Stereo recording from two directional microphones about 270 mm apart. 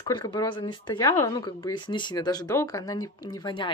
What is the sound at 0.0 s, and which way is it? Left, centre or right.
Speech, centre.